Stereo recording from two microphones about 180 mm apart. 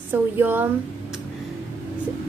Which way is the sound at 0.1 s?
10° right (ahead or behind).